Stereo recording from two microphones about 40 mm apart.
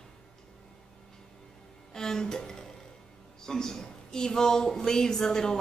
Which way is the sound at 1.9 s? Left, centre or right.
Centre.